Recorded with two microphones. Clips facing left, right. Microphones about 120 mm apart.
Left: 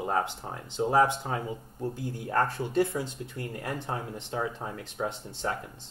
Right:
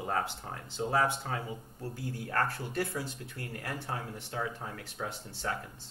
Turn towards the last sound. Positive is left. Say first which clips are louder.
# left 5 dB
turn(degrees=20)  # may be behind; listen again after turning